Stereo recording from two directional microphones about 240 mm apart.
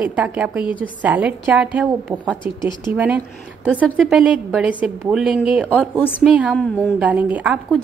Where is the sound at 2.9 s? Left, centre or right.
Centre.